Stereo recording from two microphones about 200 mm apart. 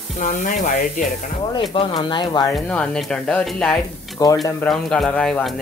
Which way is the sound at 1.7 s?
25° left (ahead or behind).